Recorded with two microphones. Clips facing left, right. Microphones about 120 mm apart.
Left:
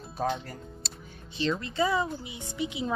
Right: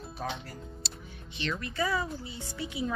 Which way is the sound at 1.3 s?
30° left (ahead or behind).